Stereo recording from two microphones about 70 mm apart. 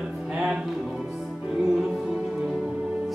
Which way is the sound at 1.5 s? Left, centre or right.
Centre.